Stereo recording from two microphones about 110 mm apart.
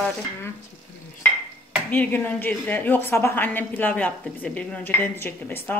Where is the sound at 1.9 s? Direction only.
15° left (ahead or behind).